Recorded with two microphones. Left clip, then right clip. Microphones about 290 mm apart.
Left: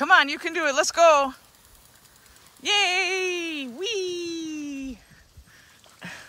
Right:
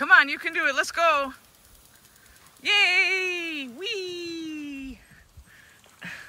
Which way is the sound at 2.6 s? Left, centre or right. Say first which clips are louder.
Right 2 dB; centre.